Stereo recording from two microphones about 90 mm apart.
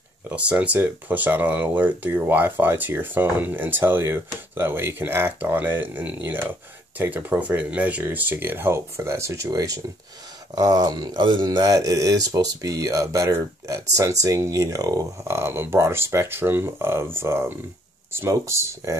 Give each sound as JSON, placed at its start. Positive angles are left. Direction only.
{"t": 0.3, "sound": "speech", "side_deg": -15}
{"t": 11.1, "sound": "speech", "side_deg": -65}
{"t": 15.3, "sound": "speech", "side_deg": -25}